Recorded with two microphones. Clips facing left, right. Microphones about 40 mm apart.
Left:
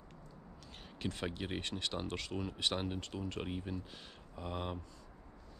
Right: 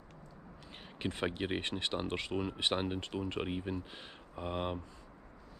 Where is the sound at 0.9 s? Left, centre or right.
Right.